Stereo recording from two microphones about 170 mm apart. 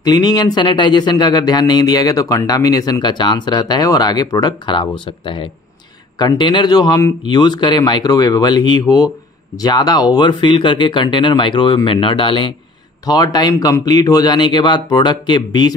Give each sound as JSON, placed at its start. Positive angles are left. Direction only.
{"t": 0.0, "sound": "speech", "side_deg": 25}